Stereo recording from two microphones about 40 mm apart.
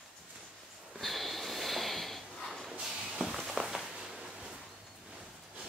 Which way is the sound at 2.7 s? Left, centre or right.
Centre.